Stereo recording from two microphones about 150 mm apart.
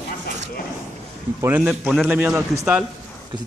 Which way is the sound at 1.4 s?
10° right (ahead or behind).